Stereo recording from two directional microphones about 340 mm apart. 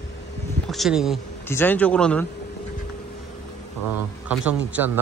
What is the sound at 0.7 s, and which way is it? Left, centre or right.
Speech, centre.